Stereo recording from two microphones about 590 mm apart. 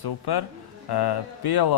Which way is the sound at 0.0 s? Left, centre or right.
Left.